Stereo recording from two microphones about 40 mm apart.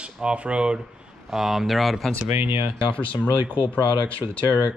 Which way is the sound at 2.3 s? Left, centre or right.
Right.